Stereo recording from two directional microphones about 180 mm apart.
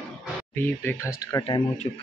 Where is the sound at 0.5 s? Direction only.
10° left (ahead or behind).